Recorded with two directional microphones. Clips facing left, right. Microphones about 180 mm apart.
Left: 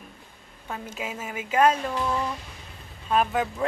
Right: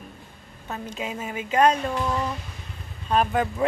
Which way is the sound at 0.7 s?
5° left (ahead or behind).